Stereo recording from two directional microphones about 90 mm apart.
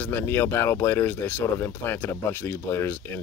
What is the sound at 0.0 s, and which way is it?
Speech, 20° left (ahead or behind).